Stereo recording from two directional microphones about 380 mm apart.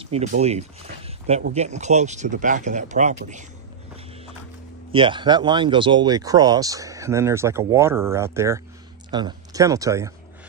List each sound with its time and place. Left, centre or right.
0.0 s speech: centre
4.9 s speech: centre